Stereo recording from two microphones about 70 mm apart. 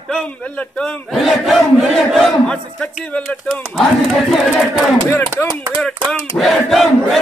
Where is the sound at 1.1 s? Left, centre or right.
Centre.